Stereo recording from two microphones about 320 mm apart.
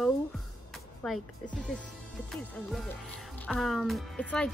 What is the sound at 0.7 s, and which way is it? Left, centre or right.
Music, centre.